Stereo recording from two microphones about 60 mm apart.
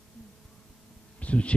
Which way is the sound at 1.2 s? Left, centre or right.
Left.